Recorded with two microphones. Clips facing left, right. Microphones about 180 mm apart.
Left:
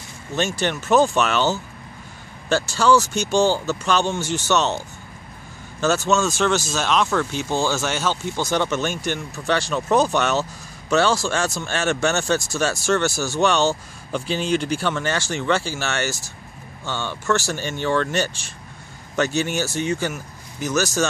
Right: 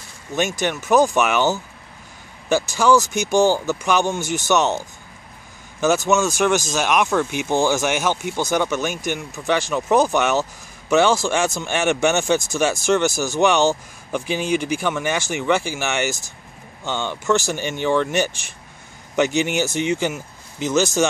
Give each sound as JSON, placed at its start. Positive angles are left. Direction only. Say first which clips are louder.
{"t": 0.4, "sound": "speech", "louder": "right 1 dB", "side_deg": -15}
{"t": 5.8, "sound": "speech", "louder": "right 2 dB", "side_deg": -15}